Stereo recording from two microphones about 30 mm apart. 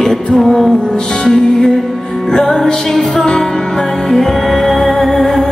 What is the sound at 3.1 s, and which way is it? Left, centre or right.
Music, left.